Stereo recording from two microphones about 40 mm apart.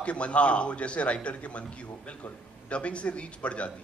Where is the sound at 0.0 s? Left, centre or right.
Left.